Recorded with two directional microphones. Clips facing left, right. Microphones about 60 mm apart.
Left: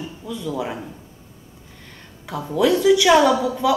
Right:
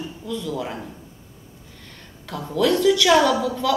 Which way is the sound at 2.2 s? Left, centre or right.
Centre.